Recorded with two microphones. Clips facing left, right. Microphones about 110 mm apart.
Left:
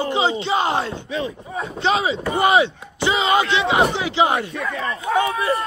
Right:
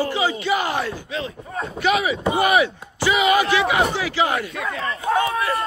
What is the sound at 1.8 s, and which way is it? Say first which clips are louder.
Speech: even; 30° left (ahead or behind).